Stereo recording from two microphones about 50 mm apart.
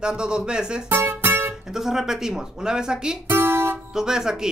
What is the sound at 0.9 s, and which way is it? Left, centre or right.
Music, right.